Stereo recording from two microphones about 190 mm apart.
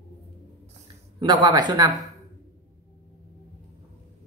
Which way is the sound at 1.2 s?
25° right (ahead or behind).